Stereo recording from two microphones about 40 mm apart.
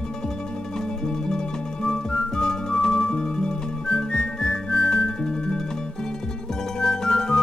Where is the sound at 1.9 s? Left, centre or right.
Centre.